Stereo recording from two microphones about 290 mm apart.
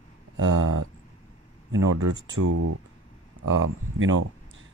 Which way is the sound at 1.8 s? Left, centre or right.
Right.